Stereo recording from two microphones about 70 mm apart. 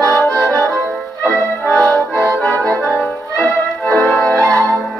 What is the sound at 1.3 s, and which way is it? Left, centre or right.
Accordion, centre.